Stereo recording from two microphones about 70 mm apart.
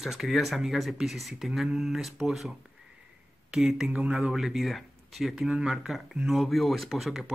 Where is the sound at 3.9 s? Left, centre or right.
Centre.